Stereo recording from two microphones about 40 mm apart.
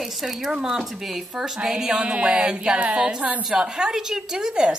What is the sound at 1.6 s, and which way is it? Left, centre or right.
Music, centre.